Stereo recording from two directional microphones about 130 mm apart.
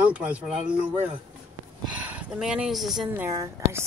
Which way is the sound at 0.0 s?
10° right (ahead or behind).